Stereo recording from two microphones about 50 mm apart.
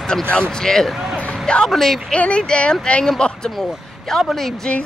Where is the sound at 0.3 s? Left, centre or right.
Centre.